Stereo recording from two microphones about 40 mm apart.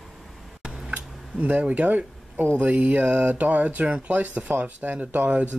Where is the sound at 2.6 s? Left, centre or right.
Right.